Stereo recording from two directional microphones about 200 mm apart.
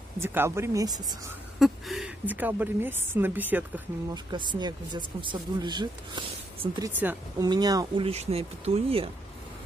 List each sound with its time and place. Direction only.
0.2 s a woman's voice: 10° right (ahead or behind)
1.6 s a woman's voice: centre (ahead or behind)
4.1 s speech: 20° right (ahead or behind)